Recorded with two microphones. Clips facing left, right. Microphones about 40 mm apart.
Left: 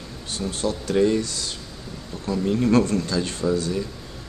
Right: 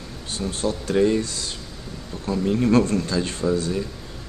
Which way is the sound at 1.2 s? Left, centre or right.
Right.